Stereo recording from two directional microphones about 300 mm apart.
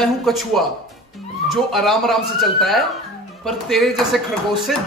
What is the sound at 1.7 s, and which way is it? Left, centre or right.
A man's voice, centre.